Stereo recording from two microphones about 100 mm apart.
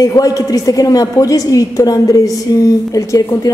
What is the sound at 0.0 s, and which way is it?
A woman's voice, 35° left (ahead or behind).